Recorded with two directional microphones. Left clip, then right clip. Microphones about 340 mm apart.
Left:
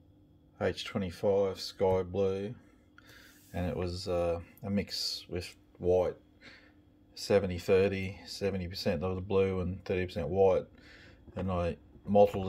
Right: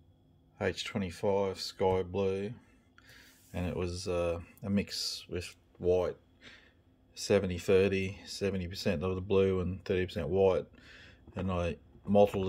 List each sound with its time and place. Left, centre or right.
0.6 s speech: centre